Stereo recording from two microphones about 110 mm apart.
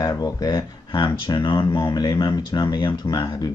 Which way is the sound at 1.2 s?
45° left (ahead or behind).